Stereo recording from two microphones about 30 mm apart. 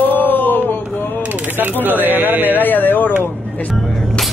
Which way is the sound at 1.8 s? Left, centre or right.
Right.